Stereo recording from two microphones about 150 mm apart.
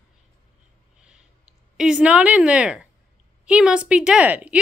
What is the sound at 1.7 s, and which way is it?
A woman's voice, 5° right (ahead or behind).